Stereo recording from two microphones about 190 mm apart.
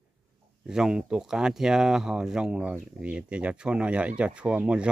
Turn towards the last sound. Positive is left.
turn(degrees=-5)  # may be behind; listen again after turning